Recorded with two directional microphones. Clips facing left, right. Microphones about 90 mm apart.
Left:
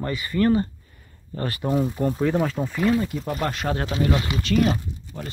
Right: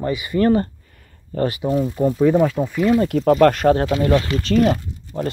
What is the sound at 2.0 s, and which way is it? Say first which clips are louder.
Speech: right 11 dB; 5° right (ahead or behind).